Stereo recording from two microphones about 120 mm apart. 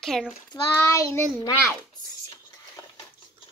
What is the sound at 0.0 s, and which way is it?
Speech, centre (ahead or behind).